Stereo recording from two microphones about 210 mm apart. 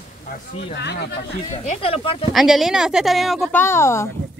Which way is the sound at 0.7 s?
55° left (ahead or behind).